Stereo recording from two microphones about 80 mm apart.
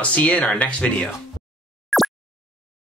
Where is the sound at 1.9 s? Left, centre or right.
Centre.